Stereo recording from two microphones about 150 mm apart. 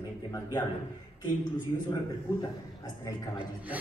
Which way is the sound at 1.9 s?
25° left (ahead or behind).